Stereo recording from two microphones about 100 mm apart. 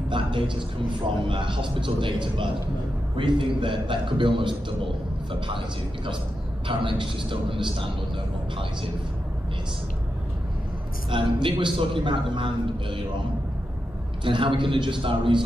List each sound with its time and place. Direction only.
0.2 s a sound: 55° right (ahead or behind)
1.0 s a man's voice: 55° right (ahead or behind)
6.7 s a man's voice: 55° right (ahead or behind)
11.1 s a man's voice: 55° right (ahead or behind)
14.2 s a man's voice: 55° right (ahead or behind)